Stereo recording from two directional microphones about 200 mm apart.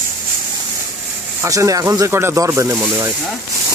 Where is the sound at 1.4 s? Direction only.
15° right (ahead or behind).